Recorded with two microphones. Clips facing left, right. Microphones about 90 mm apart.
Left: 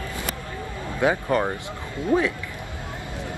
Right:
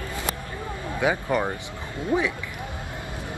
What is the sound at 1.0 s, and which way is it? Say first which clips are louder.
Speech: left 2 dB; 20° right (ahead or behind).